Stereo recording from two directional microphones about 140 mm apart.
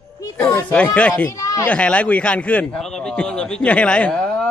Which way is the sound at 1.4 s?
25° left (ahead or behind).